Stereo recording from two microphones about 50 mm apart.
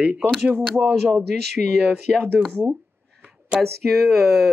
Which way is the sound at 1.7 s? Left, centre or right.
Centre.